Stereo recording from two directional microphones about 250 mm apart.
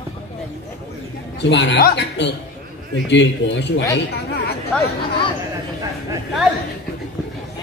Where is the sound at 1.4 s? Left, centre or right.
Left.